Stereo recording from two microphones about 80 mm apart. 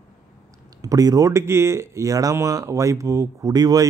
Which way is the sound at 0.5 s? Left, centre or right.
Right.